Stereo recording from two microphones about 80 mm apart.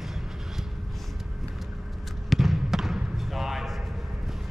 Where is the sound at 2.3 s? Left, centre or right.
Centre.